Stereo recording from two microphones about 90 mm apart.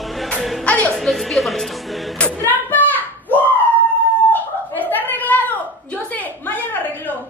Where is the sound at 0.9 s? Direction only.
Centre (ahead or behind).